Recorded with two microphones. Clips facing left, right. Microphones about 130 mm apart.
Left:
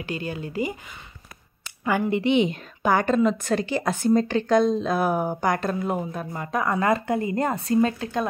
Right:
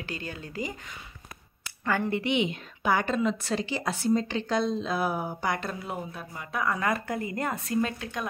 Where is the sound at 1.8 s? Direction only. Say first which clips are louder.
Left 4 dB; 15° left (ahead or behind).